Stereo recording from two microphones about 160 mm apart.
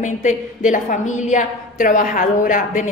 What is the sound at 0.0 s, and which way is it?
A woman's voice, 50° left (ahead or behind).